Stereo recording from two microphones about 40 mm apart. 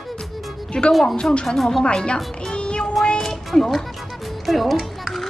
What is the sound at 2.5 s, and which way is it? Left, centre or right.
Child singing, left.